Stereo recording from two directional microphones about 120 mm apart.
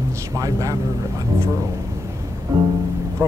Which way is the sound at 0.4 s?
30° right (ahead or behind).